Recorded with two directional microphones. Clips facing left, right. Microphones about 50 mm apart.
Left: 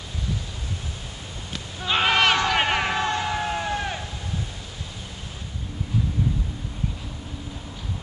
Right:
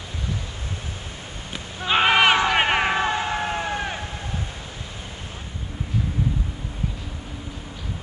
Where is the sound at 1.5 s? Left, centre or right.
Centre.